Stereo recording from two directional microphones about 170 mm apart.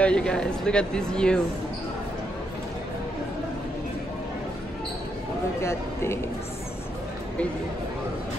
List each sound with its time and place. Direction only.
0.0 s speech: 5° left (ahead or behind)
5.6 s speech: 15° left (ahead or behind)